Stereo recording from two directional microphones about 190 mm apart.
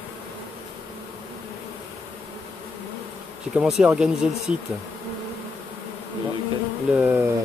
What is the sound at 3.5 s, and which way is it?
Speech, 5° right (ahead or behind).